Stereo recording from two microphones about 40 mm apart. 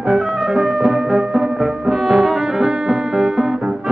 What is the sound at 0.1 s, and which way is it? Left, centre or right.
Music, centre.